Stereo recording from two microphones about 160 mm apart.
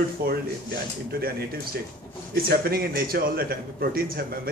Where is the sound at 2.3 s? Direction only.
70° right (ahead or behind).